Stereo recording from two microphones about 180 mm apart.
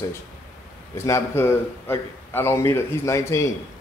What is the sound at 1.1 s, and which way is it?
A man's voice, 15° left (ahead or behind).